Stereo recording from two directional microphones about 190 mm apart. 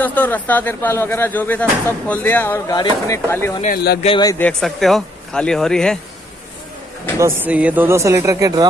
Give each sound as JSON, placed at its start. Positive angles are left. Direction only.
{"t": 0.0, "sound": "speech", "side_deg": 10}
{"t": 3.6, "sound": "speech", "side_deg": 55}
{"t": 4.0, "sound": "speech", "side_deg": 25}
{"t": 4.4, "sound": "speech", "side_deg": 5}
{"t": 7.2, "sound": "speech", "side_deg": -10}